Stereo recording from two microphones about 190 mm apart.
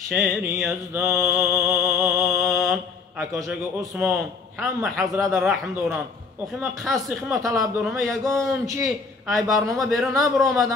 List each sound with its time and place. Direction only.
0.1 s mantra: centre (ahead or behind)
5.2 s a man's voice: centre (ahead or behind)